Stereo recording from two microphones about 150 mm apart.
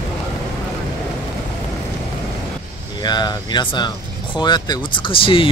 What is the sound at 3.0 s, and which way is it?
Speech, 30° left (ahead or behind).